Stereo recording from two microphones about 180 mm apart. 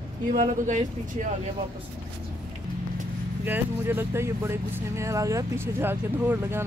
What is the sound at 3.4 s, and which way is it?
Speech, 10° right (ahead or behind).